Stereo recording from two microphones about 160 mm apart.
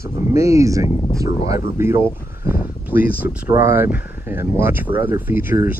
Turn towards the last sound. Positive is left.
turn(degrees=-15)  # may be behind; listen again after turning